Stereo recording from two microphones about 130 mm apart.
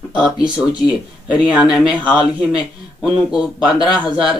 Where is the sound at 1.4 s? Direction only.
5° right (ahead or behind).